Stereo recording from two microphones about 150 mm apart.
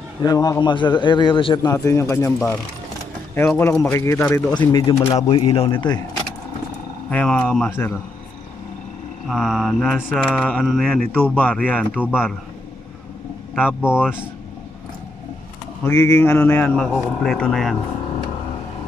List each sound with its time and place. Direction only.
0.2 s a man's voice: 25° left (ahead or behind)
1.7 s a man's voice: 20° left (ahead or behind)
4.6 s a man's voice: 35° left (ahead or behind)
7.1 s a man's voice: 10° left (ahead or behind)
9.3 s mantra: centre (ahead or behind)
10.1 s a man's voice: centre (ahead or behind)
12.0 s mantra: 5° right (ahead or behind)
13.6 s speech: 5° right (ahead or behind)
15.8 s a man's voice: 15° left (ahead or behind); by 17.7 s centre (ahead or behind)